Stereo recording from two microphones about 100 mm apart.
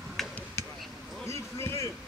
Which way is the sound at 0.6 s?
30° left (ahead or behind).